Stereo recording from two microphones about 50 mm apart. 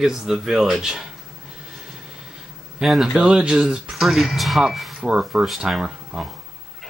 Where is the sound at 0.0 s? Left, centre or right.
Centre.